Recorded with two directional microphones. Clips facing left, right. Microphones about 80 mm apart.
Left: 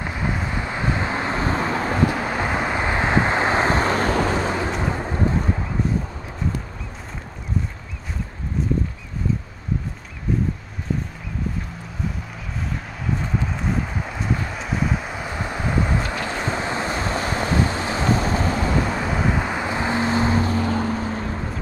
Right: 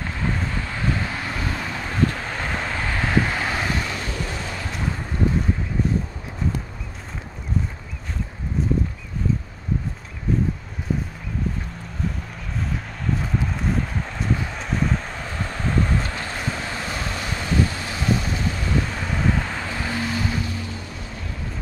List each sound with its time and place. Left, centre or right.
0.0 s vehicle: centre; by 2.0 s left
2.0 s vehicle: centre; by 4.1 s left
4.1 s vehicle: left
4.5 s vehicle: left
13.0 s a sound: centre; by 18.7 s left
18.9 s vehicle: centre; by 21.5 s left